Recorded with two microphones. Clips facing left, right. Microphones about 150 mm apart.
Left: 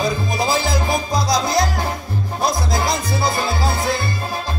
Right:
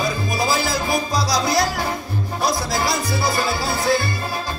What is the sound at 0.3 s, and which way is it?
Music, 20° left (ahead or behind).